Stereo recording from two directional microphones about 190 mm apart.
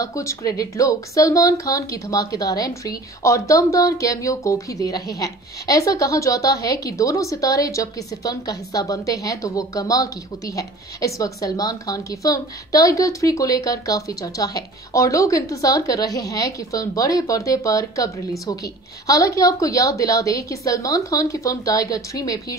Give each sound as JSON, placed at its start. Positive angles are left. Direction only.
{"t": 0.0, "sound": "speech", "side_deg": 15}